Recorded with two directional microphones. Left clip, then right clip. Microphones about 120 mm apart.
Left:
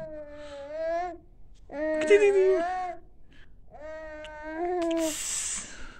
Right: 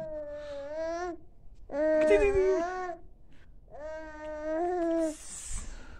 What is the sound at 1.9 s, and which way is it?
Whimper, 5° left (ahead or behind).